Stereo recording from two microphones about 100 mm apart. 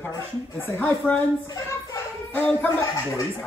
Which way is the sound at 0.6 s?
20° left (ahead or behind).